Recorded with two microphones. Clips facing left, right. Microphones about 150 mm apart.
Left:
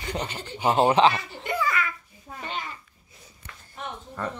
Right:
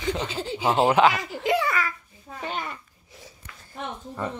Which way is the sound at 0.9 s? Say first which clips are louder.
Right 2 dB; 30° left (ahead or behind).